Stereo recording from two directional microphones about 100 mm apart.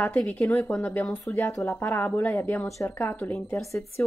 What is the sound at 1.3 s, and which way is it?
A woman's voice, 25° left (ahead or behind).